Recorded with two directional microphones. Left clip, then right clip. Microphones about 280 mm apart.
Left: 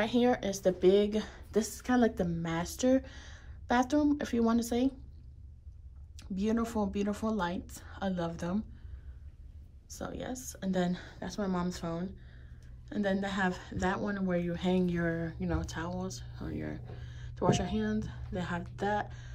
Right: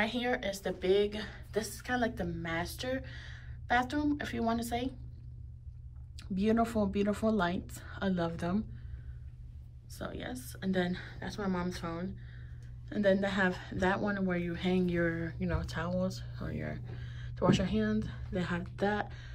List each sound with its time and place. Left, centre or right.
0.0 s a woman's voice: centre
6.1 s speech: centre
9.8 s speech: centre